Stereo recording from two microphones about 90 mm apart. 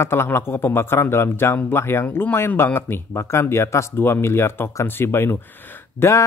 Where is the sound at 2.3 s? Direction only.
25° left (ahead or behind).